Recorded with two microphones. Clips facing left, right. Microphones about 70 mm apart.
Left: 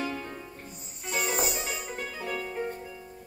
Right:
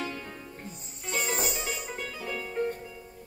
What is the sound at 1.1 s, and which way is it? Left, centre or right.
Music, centre.